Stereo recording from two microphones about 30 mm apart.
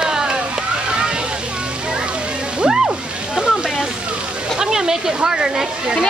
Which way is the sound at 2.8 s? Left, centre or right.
Right.